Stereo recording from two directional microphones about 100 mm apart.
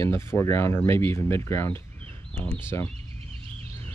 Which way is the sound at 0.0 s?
25° left (ahead or behind).